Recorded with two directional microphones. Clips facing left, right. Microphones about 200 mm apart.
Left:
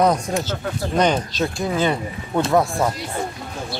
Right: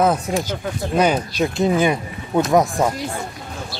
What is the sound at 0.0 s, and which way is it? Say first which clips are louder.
Speech: even; 10° right (ahead or behind).